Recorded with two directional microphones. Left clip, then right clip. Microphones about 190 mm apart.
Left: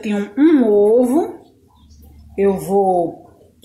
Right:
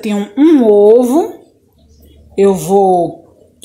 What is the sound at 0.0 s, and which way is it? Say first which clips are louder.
A woman's voice: right 4 dB; 35° right (ahead or behind).